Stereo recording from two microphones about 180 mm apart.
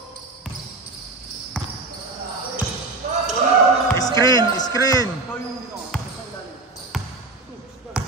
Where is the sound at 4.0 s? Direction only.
20° left (ahead or behind).